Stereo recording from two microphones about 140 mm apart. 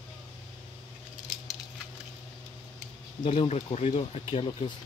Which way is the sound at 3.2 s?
40° left (ahead or behind).